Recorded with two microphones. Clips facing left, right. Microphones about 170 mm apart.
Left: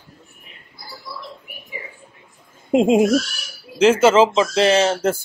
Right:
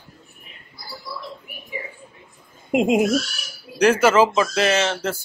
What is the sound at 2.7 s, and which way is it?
Speech, 30° left (ahead or behind).